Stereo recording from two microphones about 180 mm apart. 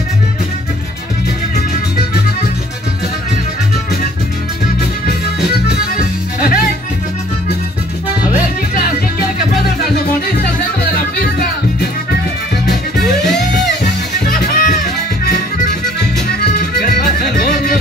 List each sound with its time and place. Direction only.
5.7 s music: 55° left (ahead or behind)
10.4 s music: 55° left (ahead or behind)
12.6 s music: 65° left (ahead or behind)
14.2 s music: 45° left (ahead or behind)
16.8 s music: 55° left (ahead or behind)